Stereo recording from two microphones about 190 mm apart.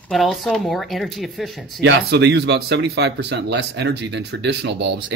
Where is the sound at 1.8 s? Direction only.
65° right (ahead or behind).